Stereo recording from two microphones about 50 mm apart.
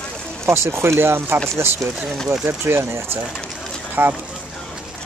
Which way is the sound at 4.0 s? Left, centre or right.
Right.